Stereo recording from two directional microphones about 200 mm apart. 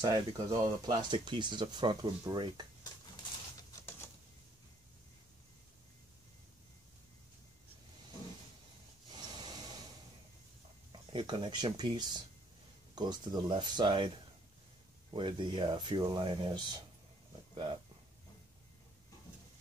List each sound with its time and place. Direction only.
0.1 s speech: 20° right (ahead or behind)
9.1 s a sound: 20° right (ahead or behind)
10.9 s speech: 25° right (ahead or behind)